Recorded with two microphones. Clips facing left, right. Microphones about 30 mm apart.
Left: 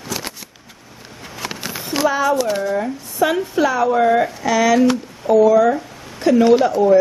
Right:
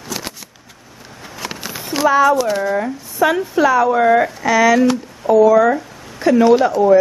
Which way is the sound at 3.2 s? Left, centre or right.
Centre.